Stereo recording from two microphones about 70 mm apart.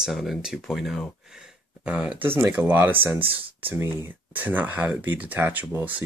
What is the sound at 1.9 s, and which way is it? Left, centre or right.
Speech, centre.